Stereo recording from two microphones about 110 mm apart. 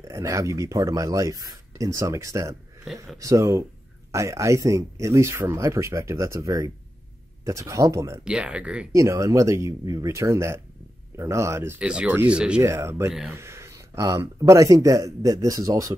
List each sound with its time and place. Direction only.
0.0 s speech: 30° right (ahead or behind)
8.2 s speech: 10° right (ahead or behind)
8.9 s speech: 30° right (ahead or behind)
11.8 s speech: 10° right (ahead or behind)
12.6 s speech: 25° right (ahead or behind)